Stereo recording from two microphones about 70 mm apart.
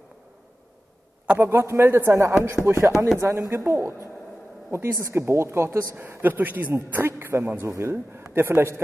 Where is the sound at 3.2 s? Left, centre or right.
Right.